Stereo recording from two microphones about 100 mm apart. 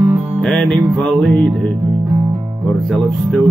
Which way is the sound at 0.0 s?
15° right (ahead or behind).